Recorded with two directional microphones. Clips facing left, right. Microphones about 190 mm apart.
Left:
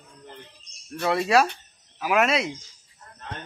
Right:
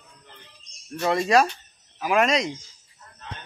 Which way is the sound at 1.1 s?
5° left (ahead or behind).